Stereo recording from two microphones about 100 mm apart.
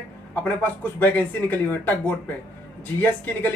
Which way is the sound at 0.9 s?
20° left (ahead or behind).